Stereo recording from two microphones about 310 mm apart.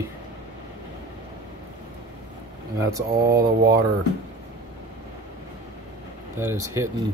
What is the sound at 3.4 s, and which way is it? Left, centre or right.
Mantra, right.